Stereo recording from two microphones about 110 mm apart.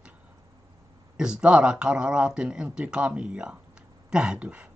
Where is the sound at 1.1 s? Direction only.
5° right (ahead or behind).